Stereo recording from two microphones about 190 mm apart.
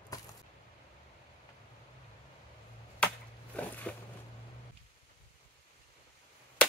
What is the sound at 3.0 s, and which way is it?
Chop, 5° left (ahead or behind).